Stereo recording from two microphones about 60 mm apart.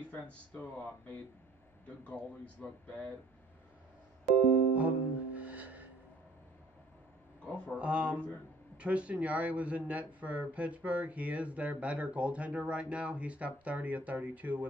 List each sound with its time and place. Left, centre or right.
0.5 s speech: left
4.7 s music: right
7.4 s speech: left
7.7 s speech: right